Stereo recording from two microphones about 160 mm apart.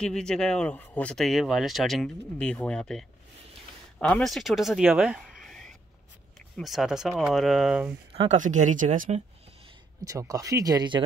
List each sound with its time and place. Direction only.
0.0 s speech: 5° left (ahead or behind)
4.1 s speech: centre (ahead or behind)
8.1 s a sound: 35° right (ahead or behind)
8.4 s speech: 50° right (ahead or behind)
10.0 s speech: 20° right (ahead or behind)